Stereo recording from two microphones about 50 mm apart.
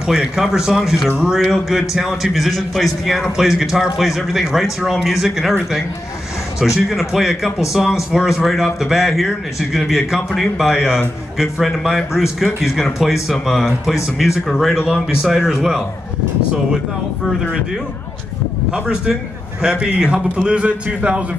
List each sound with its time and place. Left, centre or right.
0.0 s speech: centre
6.6 s speech: centre
10.7 s speech: centre
18.7 s a man's voice: centre